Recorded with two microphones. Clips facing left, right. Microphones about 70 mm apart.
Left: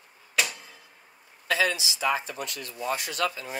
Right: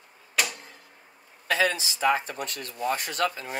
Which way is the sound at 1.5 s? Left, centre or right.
Right.